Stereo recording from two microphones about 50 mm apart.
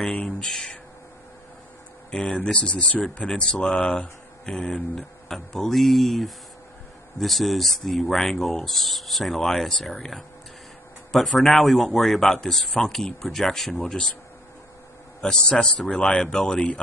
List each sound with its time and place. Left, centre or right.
0.3 s speech: centre
2.0 s speech: centre
2.3 s speech: left; by 14.0 s centre
15.2 s speech: centre